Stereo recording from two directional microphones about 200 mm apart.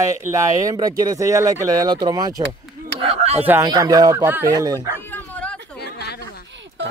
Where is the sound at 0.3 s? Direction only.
15° right (ahead or behind).